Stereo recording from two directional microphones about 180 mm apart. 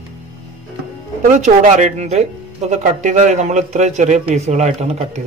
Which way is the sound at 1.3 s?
45° right (ahead or behind).